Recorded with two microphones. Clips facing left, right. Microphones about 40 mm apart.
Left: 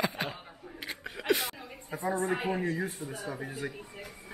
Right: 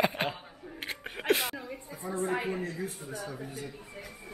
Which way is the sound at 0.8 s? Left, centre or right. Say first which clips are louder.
Right 1 dB; right.